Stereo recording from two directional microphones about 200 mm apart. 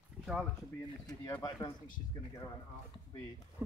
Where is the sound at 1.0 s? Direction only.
20° left (ahead or behind).